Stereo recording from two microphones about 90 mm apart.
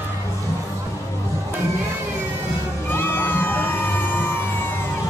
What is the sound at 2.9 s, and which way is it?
Crowd, 25° left (ahead or behind).